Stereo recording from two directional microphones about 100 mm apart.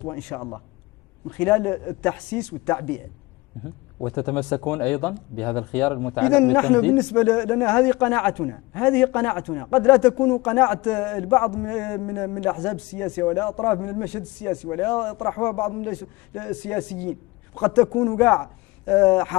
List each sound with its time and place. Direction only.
0.0 s a man's voice: 20° left (ahead or behind)
4.0 s a man's voice: 15° left (ahead or behind)